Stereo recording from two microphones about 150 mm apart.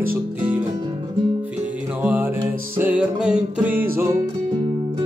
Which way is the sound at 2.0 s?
15° right (ahead or behind).